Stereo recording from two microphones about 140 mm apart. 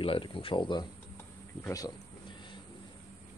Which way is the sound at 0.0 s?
40° left (ahead or behind).